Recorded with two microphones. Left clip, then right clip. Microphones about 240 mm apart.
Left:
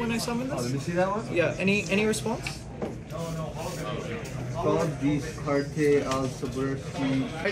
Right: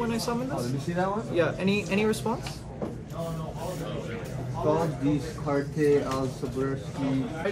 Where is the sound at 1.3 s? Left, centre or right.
Centre.